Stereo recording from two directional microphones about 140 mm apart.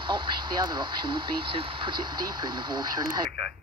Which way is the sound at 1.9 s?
90° right.